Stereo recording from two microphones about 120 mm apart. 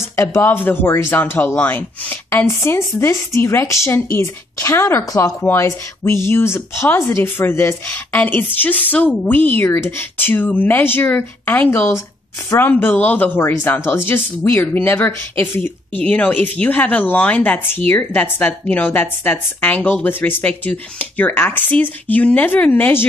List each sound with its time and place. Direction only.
0.0 s speech: 25° left (ahead or behind)